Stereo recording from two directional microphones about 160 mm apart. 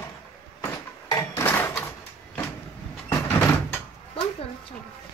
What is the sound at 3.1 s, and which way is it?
Vehicle, 20° left (ahead or behind).